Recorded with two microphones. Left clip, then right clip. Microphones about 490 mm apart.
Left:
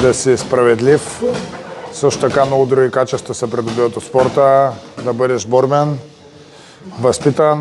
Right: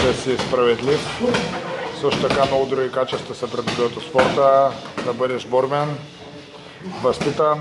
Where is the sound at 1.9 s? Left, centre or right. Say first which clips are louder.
Left 6 dB; left.